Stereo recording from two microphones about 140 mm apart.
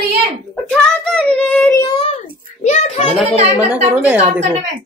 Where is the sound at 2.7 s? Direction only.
60° left (ahead or behind).